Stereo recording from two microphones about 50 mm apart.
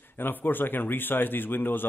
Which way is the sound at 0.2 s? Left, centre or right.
Left.